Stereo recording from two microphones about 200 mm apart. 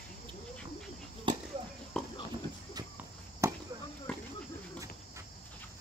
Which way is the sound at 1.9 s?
5° left (ahead or behind).